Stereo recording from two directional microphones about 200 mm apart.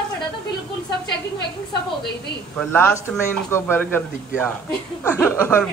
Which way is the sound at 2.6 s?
5° left (ahead or behind).